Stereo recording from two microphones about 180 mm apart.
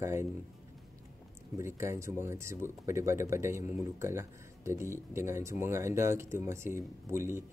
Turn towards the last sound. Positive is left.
turn(degrees=-15)  # may be behind; listen again after turning